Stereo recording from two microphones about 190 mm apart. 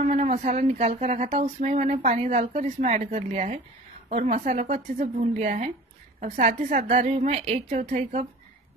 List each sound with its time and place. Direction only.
0.0 s speech: 40° right (ahead or behind)